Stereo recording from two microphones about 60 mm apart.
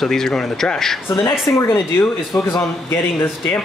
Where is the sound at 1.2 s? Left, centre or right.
Left.